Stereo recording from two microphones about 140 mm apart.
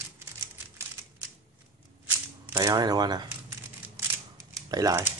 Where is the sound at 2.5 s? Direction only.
25° right (ahead or behind).